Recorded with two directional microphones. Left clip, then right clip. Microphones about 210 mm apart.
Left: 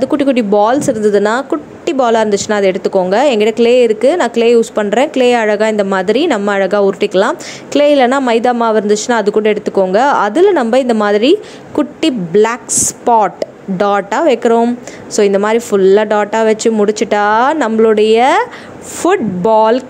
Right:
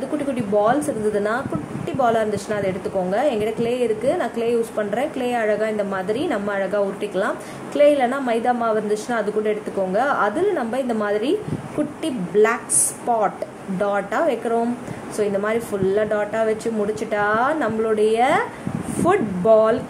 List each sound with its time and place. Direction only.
0.2 s a woman's voice: 45° left (ahead or behind)